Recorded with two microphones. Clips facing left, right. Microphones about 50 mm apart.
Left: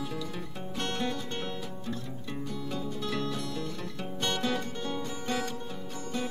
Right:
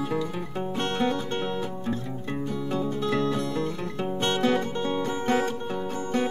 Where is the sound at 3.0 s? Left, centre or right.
Right.